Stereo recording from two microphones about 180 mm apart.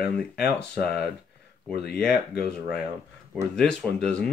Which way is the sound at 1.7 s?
60° left (ahead or behind).